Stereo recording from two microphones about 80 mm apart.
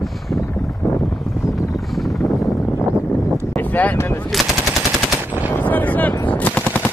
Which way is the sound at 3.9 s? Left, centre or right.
Left.